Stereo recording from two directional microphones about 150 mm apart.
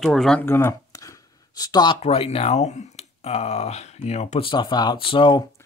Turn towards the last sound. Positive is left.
turn(degrees=35)  # may be behind; listen again after turning